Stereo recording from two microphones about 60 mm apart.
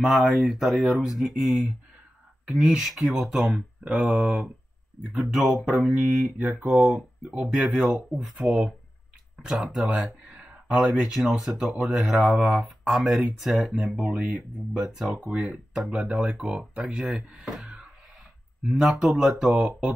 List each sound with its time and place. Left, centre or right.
0.0 s speech: centre
5.1 s speech: centre
5.9 s speech: right